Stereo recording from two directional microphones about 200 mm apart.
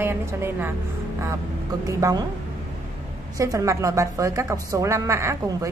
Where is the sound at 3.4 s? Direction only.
15° right (ahead or behind).